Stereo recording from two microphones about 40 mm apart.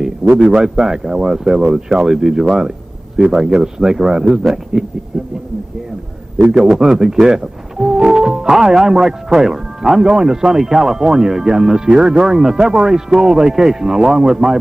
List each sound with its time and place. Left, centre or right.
0.2 s speech: centre
6.4 s speech: centre